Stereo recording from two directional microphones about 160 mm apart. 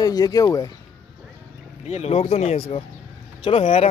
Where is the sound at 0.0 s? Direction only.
25° left (ahead or behind).